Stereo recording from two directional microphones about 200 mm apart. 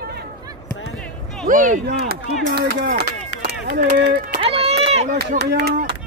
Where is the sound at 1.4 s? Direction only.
40° right (ahead or behind).